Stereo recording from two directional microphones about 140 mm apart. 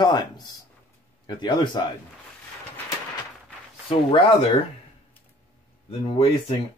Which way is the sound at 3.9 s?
40° left (ahead or behind).